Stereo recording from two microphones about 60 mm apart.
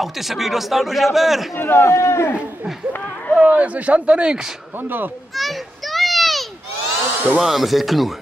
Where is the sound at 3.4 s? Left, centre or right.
Right.